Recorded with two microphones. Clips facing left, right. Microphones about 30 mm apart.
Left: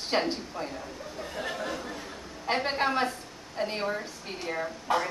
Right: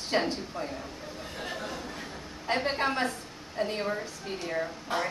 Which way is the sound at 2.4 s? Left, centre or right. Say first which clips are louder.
Left 1 dB; centre.